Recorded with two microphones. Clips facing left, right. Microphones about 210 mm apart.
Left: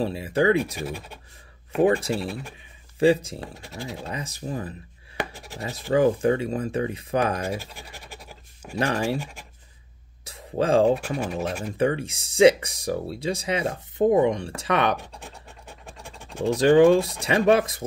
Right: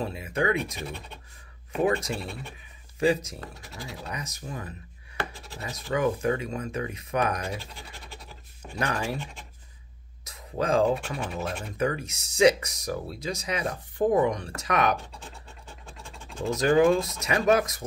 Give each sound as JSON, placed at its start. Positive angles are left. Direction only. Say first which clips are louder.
{"t": 0.0, "sound": "speech", "louder": "left 6 dB", "side_deg": 30}
{"t": 0.7, "sound": "speech", "louder": "left 5 dB", "side_deg": 5}
{"t": 1.8, "sound": "speech", "louder": "left 5 dB", "side_deg": 30}
{"t": 7.5, "sound": "scratch", "louder": "left 4 dB", "side_deg": 10}
{"t": 8.7, "sound": "speech", "louder": "left 5 dB", "side_deg": 30}
{"t": 9.2, "sound": "speech", "louder": "left 2 dB", "side_deg": 10}
{"t": 10.2, "sound": "a sound", "louder": "left 4 dB", "side_deg": 30}
{"t": 11.3, "sound": "speech", "louder": "left 4 dB", "side_deg": 5}
{"t": 11.7, "sound": "speech", "louder": "left 5 dB", "side_deg": 30}
{"t": 16.5, "sound": "speech", "louder": "left 5 dB", "side_deg": 30}